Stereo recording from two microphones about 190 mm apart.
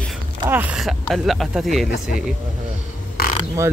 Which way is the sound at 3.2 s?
55° left (ahead or behind).